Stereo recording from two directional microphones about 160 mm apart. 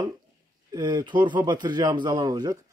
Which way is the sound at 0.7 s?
25° right (ahead or behind).